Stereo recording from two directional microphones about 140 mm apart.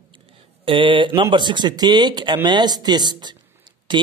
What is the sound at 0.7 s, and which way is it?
Speech, 40° right (ahead or behind).